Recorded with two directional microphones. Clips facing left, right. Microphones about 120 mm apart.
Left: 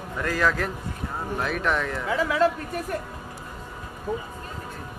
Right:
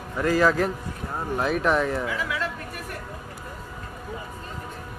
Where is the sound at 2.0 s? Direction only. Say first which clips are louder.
Left 7 dB; 35° left (ahead or behind).